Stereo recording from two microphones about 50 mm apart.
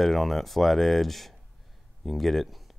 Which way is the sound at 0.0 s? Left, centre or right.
Centre.